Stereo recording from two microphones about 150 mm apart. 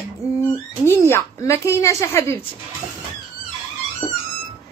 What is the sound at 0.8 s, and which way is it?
A woman's voice, 15° left (ahead or behind).